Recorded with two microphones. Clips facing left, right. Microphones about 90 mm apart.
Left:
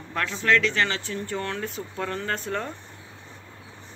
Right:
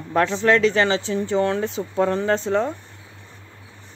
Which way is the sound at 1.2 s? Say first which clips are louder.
Right 11 dB; 15° right (ahead or behind).